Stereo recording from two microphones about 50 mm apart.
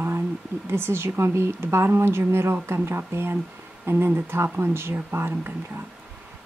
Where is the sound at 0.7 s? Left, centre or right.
Right.